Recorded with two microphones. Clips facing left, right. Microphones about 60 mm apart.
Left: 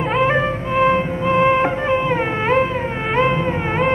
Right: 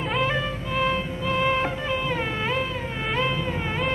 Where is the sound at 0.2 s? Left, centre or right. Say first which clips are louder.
Left 8 dB; left.